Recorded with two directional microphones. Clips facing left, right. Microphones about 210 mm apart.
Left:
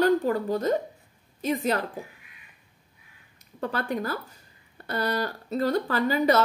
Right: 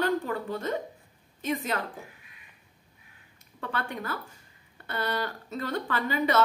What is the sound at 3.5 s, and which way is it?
A woman's voice, 35° left (ahead or behind).